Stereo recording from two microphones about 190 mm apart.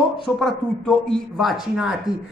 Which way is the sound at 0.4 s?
5° left (ahead or behind).